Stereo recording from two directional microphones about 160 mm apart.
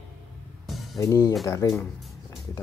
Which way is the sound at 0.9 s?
20° left (ahead or behind).